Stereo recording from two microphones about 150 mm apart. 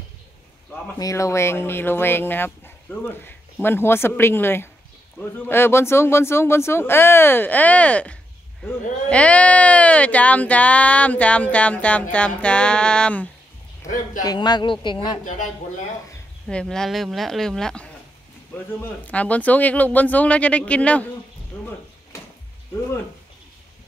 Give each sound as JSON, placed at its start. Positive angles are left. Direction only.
{"t": 0.9, "sound": "speech", "side_deg": 20}
{"t": 14.2, "sound": "speech", "side_deg": 25}
{"t": 16.4, "sound": "speech", "side_deg": 5}